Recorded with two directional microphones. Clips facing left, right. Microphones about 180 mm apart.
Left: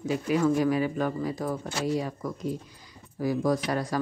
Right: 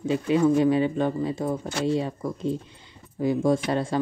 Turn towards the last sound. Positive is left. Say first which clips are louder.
# right 3 dB
turn(degrees=-25)  # may be behind; listen again after turning